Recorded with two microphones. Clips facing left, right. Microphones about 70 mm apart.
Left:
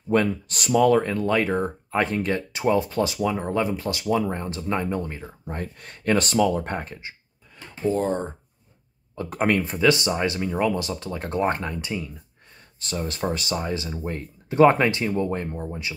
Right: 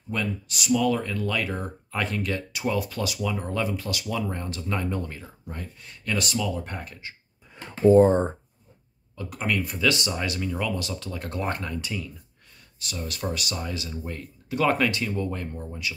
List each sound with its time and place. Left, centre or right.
0.1 s speech: left
5.5 s speech: left
7.9 s speech: right
9.1 s speech: left
9.6 s speech: left
12.8 s speech: left